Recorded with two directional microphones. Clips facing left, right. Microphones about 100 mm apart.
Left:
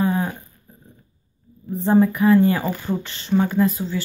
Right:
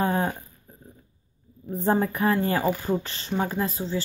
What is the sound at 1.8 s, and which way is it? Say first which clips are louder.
Speech: left 6 dB; 40° right (ahead or behind).